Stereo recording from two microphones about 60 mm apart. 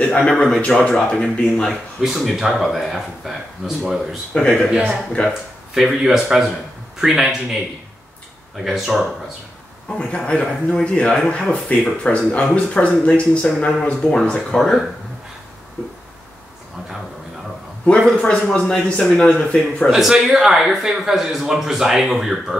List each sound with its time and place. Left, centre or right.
0.0 s a sound: centre
0.3 s speech: centre
0.7 s speech: left
2.0 s a man's voice: centre
4.3 s speech: centre
5.8 s a man's voice: centre
8.5 s a man's voice: centre
9.8 s speech: centre
14.6 s a man's voice: centre
18.1 s speech: centre
19.9 s a man's voice: centre